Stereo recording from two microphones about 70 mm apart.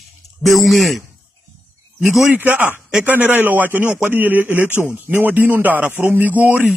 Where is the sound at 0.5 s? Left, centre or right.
Centre.